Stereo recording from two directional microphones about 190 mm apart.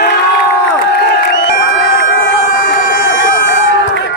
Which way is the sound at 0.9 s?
60° left (ahead or behind).